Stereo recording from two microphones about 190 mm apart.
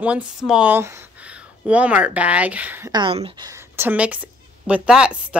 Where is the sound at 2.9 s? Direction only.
20° right (ahead or behind); by 5.4 s 5° right (ahead or behind).